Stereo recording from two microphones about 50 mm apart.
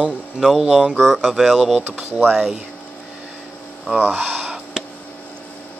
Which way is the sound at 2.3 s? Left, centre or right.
Centre.